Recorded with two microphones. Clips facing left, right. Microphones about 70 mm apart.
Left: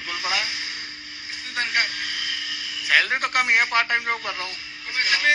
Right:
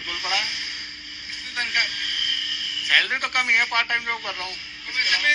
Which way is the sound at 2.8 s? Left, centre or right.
Left.